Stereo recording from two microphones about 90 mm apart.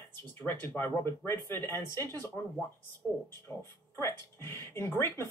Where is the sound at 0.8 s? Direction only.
25° left (ahead or behind).